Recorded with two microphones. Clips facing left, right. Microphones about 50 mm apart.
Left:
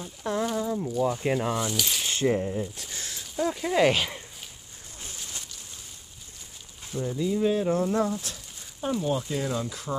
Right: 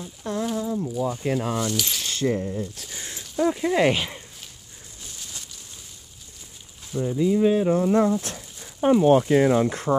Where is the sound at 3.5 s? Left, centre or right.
Centre.